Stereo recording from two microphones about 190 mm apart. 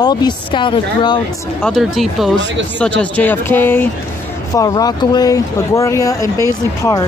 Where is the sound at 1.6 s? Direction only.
Centre (ahead or behind); by 7.1 s 15° left (ahead or behind).